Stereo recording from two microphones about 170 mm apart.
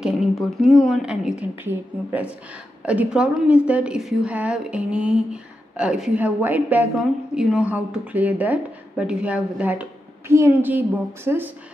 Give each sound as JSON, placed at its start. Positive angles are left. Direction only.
{"t": 0.0, "sound": "a woman's voice", "side_deg": 0}